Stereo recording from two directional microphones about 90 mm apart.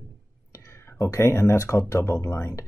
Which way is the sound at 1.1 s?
30° left (ahead or behind).